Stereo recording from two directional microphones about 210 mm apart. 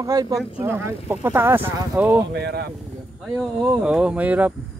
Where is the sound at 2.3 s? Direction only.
50° right (ahead or behind).